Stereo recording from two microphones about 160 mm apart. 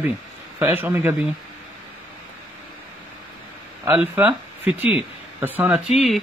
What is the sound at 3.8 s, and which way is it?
Speech, 10° right (ahead or behind).